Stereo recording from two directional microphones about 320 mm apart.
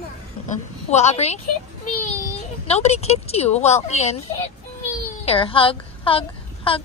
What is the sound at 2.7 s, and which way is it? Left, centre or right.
A woman's voice, centre.